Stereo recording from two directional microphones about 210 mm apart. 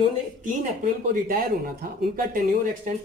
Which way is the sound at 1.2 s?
45° right (ahead or behind).